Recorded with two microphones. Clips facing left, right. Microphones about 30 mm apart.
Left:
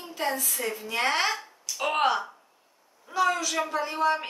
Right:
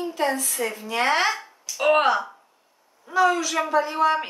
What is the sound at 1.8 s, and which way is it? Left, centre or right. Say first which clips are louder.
Speech: right 6 dB; centre.